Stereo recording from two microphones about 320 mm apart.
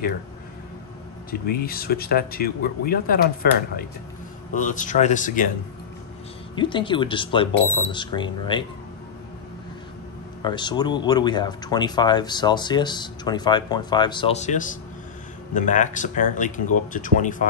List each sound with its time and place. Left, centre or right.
1.5 s speech: left
6.5 s speech: centre
10.4 s speech: centre